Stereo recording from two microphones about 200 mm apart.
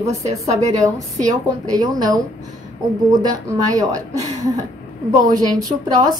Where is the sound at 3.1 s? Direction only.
20° right (ahead or behind).